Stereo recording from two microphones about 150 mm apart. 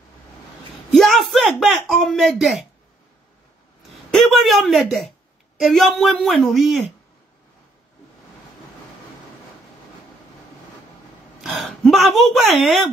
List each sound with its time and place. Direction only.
0.9 s a man's voice: centre (ahead or behind)
3.9 s a woman's voice: centre (ahead or behind)
11.4 s speech: centre (ahead or behind)